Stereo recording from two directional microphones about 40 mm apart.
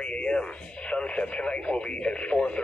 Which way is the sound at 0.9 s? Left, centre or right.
Left.